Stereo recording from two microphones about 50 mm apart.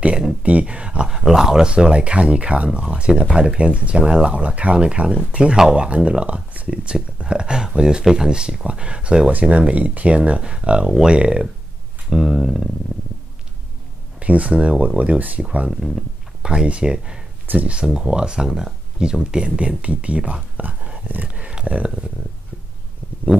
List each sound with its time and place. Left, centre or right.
0.0 s a sound: centre
0.4 s speech: right
12.1 s speech: centre
14.2 s speech: right
15.7 s speech: centre
16.4 s speech: centre
17.5 s speech: right
17.7 s speech: centre